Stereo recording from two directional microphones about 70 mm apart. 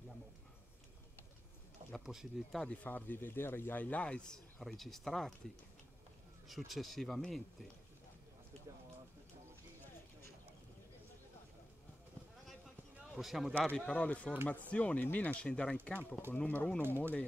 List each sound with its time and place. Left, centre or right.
2.0 s speech: centre
2.6 s speech: centre
4.6 s speech: centre
6.4 s speech: centre
13.1 s speech: centre
13.7 s speech: centre
14.0 s speech: left
16.8 s speech: right